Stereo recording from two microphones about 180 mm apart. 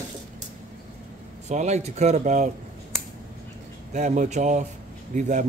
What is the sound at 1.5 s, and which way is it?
Speech, 40° right (ahead or behind).